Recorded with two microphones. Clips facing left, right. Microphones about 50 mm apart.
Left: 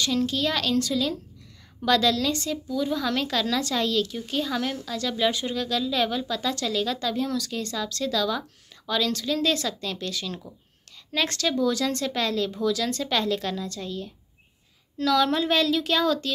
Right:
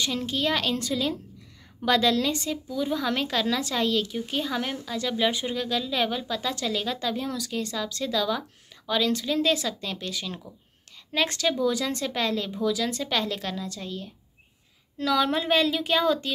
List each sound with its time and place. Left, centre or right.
0.0 s a woman's voice: centre